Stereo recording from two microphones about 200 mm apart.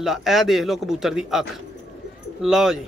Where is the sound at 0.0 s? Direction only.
Centre (ahead or behind).